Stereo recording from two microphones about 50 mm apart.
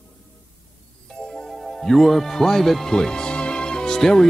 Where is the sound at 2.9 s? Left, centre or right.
Centre.